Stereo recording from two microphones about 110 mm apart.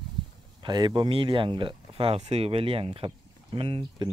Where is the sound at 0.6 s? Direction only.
40° right (ahead or behind).